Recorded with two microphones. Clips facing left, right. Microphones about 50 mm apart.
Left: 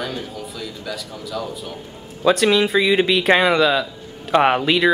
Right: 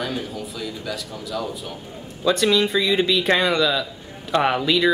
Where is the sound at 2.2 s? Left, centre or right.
Left.